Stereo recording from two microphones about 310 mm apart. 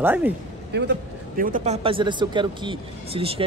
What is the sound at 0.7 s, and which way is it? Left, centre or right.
A man's voice, right.